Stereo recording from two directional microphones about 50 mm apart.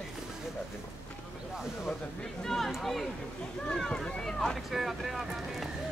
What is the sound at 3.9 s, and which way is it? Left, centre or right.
Boat, centre.